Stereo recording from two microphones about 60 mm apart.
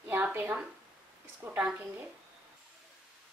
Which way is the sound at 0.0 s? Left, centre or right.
Right.